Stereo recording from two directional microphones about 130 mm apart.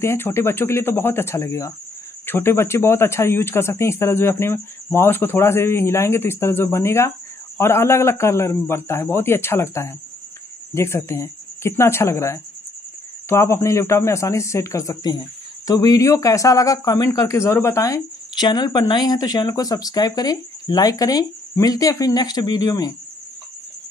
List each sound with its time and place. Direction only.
0.0 s speech: 20° left (ahead or behind)